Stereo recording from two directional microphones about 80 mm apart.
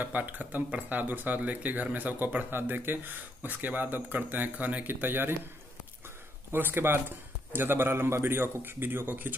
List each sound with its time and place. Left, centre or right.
0.0 s speech: right
6.5 s speech: right